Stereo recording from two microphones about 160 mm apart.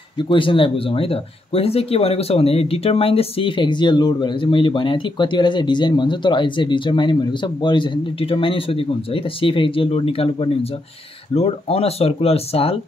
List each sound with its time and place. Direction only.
0.2 s speech: 30° left (ahead or behind)